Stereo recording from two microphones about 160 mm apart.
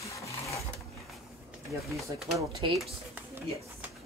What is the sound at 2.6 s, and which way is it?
Speech, 30° right (ahead or behind).